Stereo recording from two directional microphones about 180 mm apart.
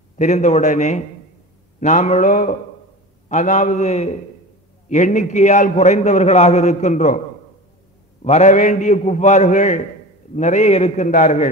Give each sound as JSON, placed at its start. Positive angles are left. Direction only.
{"t": 0.2, "sound": "a man's voice", "side_deg": 40}
{"t": 8.2, "sound": "a man's voice", "side_deg": 40}